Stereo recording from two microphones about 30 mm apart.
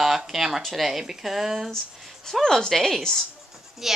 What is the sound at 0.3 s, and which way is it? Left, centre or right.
Speech, centre.